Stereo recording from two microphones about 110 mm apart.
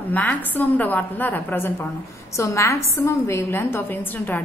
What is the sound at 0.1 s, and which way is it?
A woman's voice, 15° left (ahead or behind).